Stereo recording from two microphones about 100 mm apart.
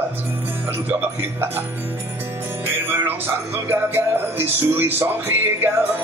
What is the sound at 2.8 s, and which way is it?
Music, 20° right (ahead or behind).